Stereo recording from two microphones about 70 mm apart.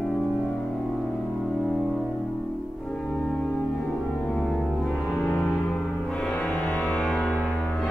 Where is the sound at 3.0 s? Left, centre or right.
Centre.